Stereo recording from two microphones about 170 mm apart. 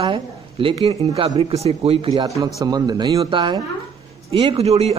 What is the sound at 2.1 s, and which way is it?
A man's voice, 20° right (ahead or behind).